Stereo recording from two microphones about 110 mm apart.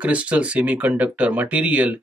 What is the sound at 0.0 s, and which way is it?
Speech, 10° right (ahead or behind).